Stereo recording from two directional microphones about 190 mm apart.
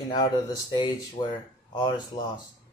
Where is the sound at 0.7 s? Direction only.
20° left (ahead or behind).